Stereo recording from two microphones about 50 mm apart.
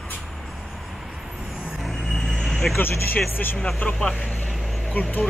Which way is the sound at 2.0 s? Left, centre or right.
Centre.